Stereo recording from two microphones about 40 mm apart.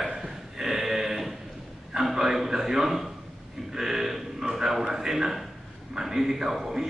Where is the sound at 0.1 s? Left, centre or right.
Centre.